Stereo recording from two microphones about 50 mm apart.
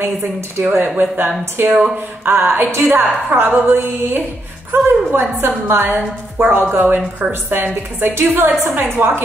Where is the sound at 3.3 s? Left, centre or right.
Right.